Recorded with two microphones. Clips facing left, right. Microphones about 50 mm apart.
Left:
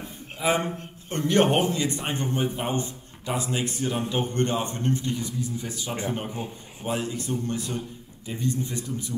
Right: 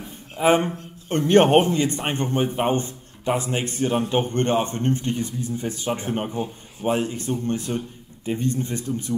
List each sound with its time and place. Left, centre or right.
0.4 s a man's voice: right